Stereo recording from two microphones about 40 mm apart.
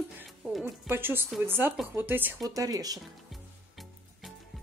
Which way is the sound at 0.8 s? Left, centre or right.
Right.